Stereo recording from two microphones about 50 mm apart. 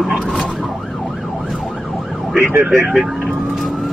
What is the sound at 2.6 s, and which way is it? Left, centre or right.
Speech, right.